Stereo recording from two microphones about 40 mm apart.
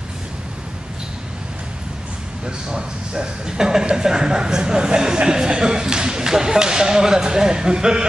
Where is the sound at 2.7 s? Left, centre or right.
Centre.